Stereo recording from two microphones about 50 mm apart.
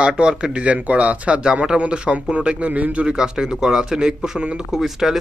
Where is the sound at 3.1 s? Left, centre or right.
Centre.